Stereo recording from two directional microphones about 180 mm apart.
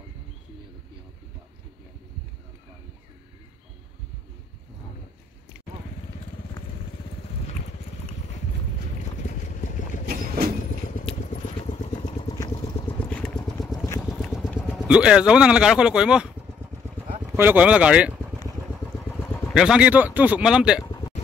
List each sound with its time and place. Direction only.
9.5 s vehicle: 45° left (ahead or behind)
11.1 s vehicle: 40° left (ahead or behind)
12.3 s vehicle: 25° left (ahead or behind)
13.0 s vehicle: 5° left (ahead or behind)
13.4 s vehicle: 20° left (ahead or behind)
14.4 s a sound: 10° left (ahead or behind)
14.9 s speech: 5° right (ahead or behind)
19.0 s vehicle: 10° left (ahead or behind)
19.5 s speech: 5° right (ahead or behind)